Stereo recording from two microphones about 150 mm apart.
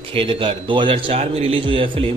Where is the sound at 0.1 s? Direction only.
35° right (ahead or behind).